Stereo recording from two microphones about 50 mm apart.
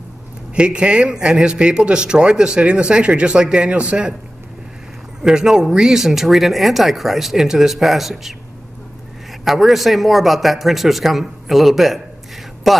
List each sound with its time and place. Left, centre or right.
0.6 s speech: centre
5.2 s speech: centre
9.4 s speech: centre